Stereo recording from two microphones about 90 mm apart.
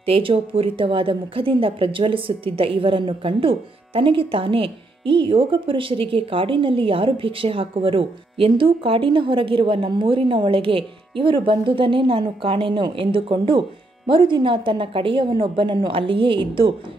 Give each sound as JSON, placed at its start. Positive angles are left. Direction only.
{"t": 0.0, "sound": "a woman's voice", "side_deg": -85}